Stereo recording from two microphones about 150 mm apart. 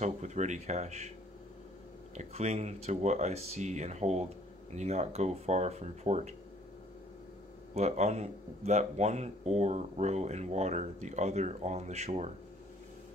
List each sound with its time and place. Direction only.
0.0 s speech: 50° right (ahead or behind)
2.1 s speech: 50° right (ahead or behind)
7.7 s speech: 50° right (ahead or behind)